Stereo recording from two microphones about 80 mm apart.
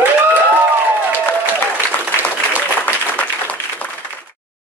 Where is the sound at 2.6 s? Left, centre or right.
Centre.